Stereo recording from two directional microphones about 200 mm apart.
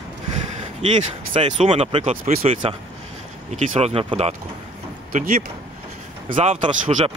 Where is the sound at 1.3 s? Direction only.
30° right (ahead or behind).